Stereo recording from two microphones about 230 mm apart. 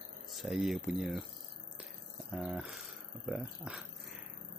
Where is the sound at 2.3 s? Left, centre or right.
Centre.